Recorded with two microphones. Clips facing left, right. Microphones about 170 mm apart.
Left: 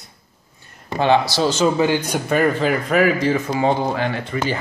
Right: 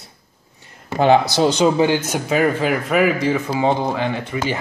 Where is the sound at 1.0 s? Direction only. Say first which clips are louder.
Right 3 dB; 15° right (ahead or behind).